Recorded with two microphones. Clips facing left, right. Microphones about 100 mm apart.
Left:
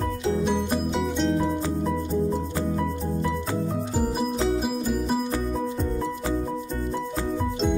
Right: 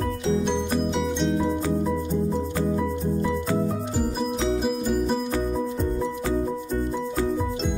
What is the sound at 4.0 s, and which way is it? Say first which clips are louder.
Music: left 2 dB; 5° left (ahead or behind).